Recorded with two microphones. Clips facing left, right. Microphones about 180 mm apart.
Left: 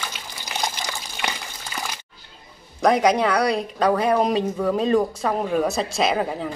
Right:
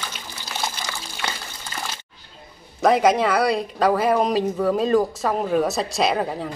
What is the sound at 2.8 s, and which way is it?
Speech, centre (ahead or behind).